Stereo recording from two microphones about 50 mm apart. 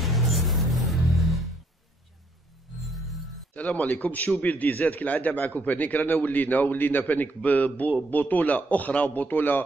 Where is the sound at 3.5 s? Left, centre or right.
Left.